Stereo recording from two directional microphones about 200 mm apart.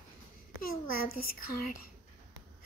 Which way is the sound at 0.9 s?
45° left (ahead or behind).